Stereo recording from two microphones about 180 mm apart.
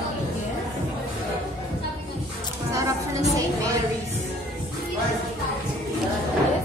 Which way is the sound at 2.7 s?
20° right (ahead or behind).